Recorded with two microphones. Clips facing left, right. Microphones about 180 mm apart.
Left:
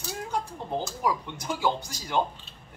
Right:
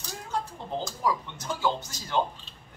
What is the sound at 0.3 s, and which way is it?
Speech, 15° left (ahead or behind).